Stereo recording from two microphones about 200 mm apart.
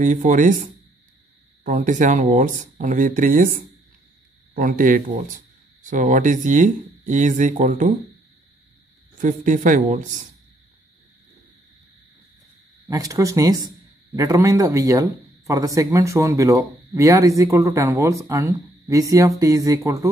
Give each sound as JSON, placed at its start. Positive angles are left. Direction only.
{"t": 0.0, "sound": "speech", "side_deg": -40}
{"t": 4.6, "sound": "speech", "side_deg": -45}
{"t": 9.2, "sound": "speech", "side_deg": -40}
{"t": 12.8, "sound": "speech", "side_deg": -15}